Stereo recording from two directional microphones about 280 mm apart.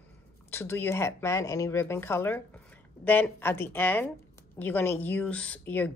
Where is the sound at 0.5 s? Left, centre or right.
Centre.